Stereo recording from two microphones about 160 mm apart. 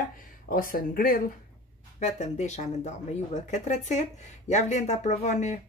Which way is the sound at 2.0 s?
45° left (ahead or behind).